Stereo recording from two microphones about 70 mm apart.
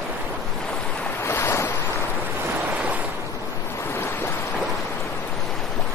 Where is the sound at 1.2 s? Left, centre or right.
Left.